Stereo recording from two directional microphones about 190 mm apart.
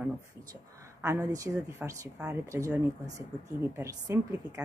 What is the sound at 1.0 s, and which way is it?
Speech, 15° right (ahead or behind).